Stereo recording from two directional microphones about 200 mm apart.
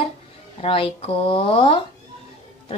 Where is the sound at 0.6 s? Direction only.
25° left (ahead or behind).